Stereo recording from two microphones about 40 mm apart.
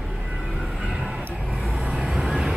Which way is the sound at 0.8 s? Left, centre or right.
Centre.